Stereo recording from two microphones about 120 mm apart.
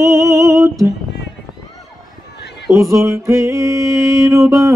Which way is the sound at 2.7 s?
25° right (ahead or behind).